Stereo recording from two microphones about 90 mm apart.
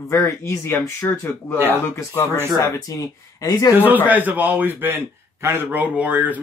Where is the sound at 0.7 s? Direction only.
25° left (ahead or behind).